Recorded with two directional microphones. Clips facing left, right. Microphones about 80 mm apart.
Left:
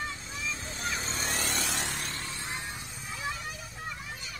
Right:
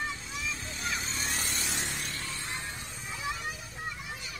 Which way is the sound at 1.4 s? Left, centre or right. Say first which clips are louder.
Left 3 dB; left.